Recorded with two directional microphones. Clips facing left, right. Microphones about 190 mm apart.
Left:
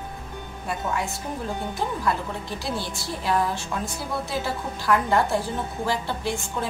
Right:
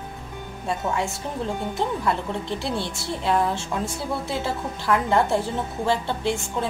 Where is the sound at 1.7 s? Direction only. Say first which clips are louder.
Right 1 dB; 25° right (ahead or behind).